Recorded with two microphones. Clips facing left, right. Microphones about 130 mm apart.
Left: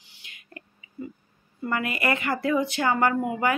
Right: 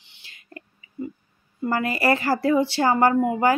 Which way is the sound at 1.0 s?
20° right (ahead or behind).